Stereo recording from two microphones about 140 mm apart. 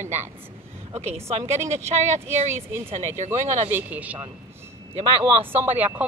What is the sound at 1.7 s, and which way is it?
Speech, 55° right (ahead or behind).